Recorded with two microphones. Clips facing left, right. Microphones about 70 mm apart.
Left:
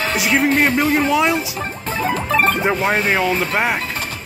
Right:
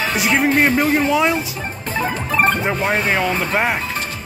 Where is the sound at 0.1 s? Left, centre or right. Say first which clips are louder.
Even; centre.